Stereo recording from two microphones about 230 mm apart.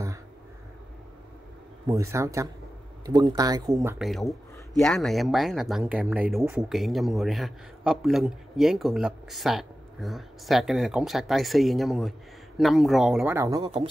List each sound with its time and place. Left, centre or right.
1.9 s speech: centre
4.0 s speech: centre
13.6 s speech: right